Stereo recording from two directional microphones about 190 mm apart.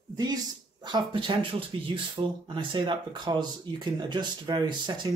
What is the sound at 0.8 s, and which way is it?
Speech, 25° right (ahead or behind).